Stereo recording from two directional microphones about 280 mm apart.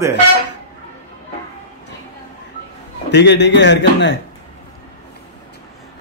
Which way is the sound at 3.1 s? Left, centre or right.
Left.